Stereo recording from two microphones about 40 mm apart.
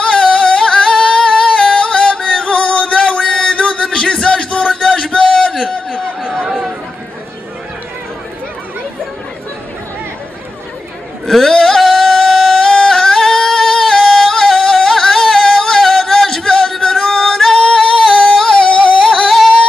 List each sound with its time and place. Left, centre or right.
0.0 s singing: left
5.6 s a sound: left
11.2 s a sound: centre
11.5 s singing: centre
12.8 s yodeling: centre
16.4 s singing: centre
18.6 s music: left
19.2 s yodeling: centre